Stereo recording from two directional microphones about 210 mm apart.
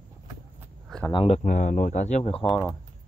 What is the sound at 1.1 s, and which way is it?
Speech, 25° left (ahead or behind).